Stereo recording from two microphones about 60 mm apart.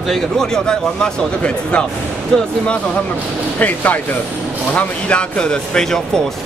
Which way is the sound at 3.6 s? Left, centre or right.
Left.